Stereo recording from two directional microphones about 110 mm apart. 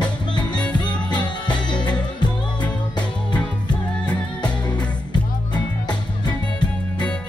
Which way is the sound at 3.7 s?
10° left (ahead or behind).